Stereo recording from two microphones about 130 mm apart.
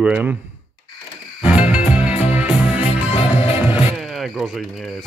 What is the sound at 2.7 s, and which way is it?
Music, 45° left (ahead or behind).